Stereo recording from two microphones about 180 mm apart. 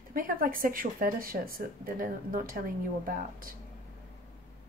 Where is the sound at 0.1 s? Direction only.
50° right (ahead or behind).